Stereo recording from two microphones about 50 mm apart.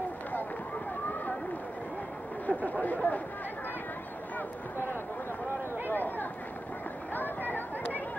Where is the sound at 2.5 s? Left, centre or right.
Left.